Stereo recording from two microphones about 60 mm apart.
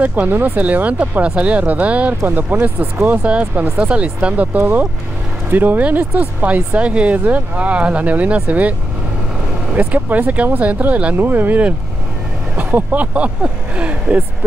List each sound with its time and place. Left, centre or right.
0.0 s speech: right
9.8 s speech: right